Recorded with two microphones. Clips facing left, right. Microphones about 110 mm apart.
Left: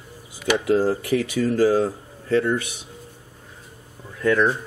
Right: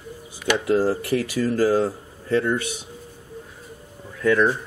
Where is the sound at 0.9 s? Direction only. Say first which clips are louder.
Left 1 dB; 40° right (ahead or behind).